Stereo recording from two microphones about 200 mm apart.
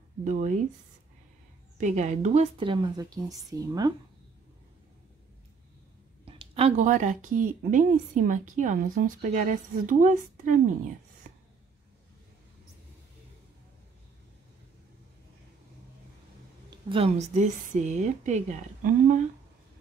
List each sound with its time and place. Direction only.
0.2 s a woman's voice: 40° right (ahead or behind)
1.8 s speech: 35° right (ahead or behind); by 3.9 s 20° right (ahead or behind)
6.2 s a woman's voice: 25° right (ahead or behind)
11.3 s a sound: 45° right (ahead or behind)
16.7 s a woman's voice: 30° right (ahead or behind)